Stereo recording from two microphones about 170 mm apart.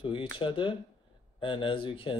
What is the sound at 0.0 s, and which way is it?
Speech, 30° left (ahead or behind).